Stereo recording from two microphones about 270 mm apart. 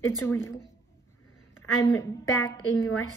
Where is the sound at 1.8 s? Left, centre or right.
Centre.